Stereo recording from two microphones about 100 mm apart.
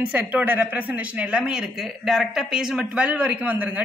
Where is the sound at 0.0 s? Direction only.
15° right (ahead or behind).